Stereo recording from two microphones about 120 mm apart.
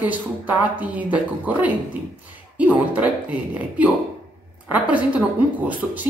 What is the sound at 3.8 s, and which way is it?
Speech, 10° right (ahead or behind).